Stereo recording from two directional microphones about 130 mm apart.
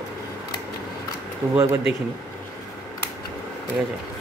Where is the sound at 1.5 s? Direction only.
20° right (ahead or behind).